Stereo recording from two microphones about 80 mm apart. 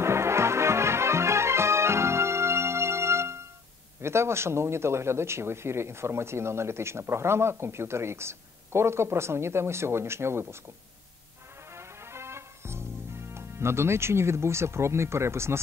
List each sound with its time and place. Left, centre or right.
0.0 s music: right
4.0 s speech: right
11.7 s music: right